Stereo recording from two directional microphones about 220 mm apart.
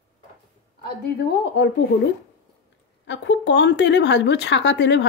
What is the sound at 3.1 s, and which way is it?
Speech, 55° left (ahead or behind).